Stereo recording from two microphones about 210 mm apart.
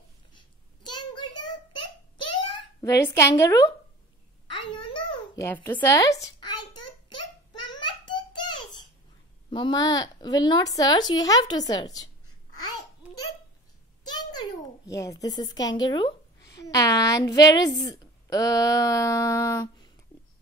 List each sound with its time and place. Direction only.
0.8 s child singing: 20° left (ahead or behind)
2.2 s babbling: 20° left (ahead or behind)
8.1 s a sound: 20° left (ahead or behind)
9.5 s a woman's voice: 20° left (ahead or behind)
14.0 s a child's voice: 20° left (ahead or behind)